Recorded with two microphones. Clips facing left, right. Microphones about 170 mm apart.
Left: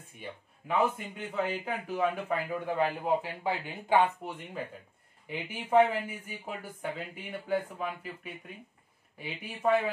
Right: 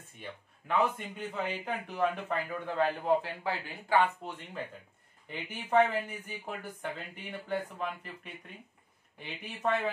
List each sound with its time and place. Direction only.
0.2 s a man's voice: 5° left (ahead or behind)